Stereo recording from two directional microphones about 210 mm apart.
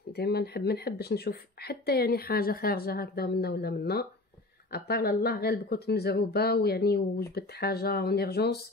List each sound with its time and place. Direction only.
0.1 s speech: 50° left (ahead or behind)